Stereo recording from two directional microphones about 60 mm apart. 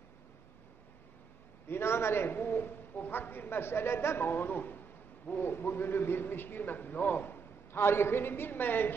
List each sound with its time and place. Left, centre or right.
1.7 s a man's voice: left